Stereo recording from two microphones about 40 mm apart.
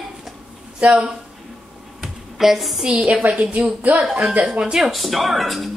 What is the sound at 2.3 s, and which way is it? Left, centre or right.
Speech, centre.